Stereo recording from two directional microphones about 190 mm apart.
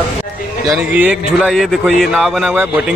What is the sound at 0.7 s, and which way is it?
A man's voice, 10° right (ahead or behind).